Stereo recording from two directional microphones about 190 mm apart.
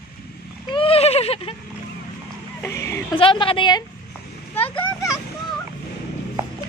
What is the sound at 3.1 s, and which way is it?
Speech, 25° left (ahead or behind).